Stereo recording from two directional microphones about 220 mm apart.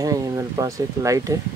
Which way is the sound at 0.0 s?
15° right (ahead or behind).